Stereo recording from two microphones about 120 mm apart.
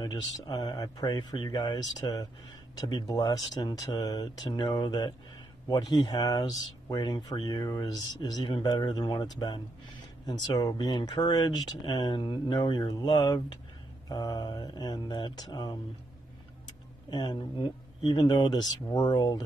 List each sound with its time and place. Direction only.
0.0 s speech: 35° left (ahead or behind)
17.1 s speech: 35° left (ahead or behind)